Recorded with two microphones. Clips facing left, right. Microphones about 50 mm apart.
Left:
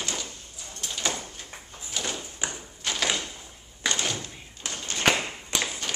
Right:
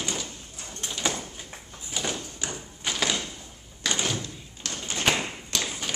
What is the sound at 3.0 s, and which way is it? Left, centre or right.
Door, centre.